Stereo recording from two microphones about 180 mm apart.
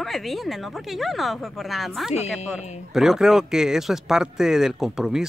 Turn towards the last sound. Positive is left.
turn(degrees=-5)  # may be behind; listen again after turning